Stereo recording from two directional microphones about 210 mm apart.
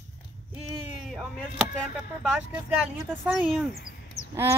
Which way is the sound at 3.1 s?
Centre (ahead or behind).